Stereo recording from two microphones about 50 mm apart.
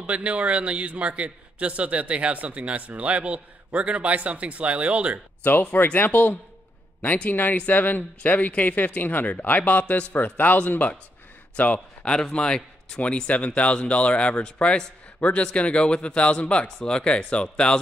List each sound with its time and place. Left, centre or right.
0.0 s a man's voice: right
5.4 s a man's voice: left; by 13.0 s centre
13.0 s a man's voice: left